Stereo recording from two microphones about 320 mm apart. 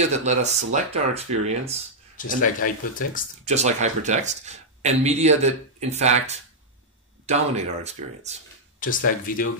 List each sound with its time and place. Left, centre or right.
0.1 s speech: right
2.1 s speech: left
3.4 s speech: right
8.7 s speech: left